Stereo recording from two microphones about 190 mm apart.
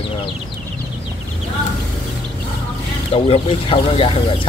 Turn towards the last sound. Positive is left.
turn(degrees=30)  # may be behind; listen again after turning